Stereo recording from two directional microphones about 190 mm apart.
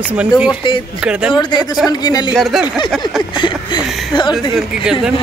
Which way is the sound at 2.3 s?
Centre (ahead or behind).